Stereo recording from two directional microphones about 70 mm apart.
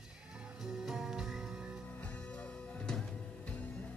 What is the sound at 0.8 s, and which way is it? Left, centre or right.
Music, centre.